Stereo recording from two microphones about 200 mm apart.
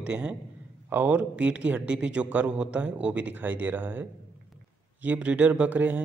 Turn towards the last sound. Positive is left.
turn(degrees=-10)  # may be behind; listen again after turning